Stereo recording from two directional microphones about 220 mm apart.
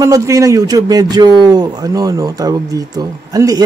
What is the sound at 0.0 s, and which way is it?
A man's voice, 15° right (ahead or behind).